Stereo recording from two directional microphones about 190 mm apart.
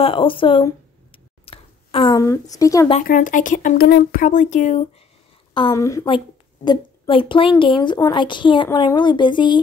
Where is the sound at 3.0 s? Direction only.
45° left (ahead or behind).